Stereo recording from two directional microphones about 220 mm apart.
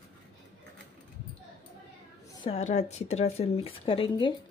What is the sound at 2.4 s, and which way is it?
Speech, 30° left (ahead or behind).